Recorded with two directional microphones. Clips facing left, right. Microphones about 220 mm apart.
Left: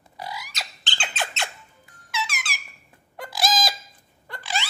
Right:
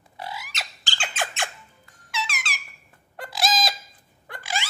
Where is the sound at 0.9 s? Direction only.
50° right (ahead or behind).